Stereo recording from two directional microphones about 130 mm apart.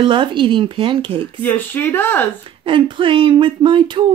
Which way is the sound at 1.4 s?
15° left (ahead or behind).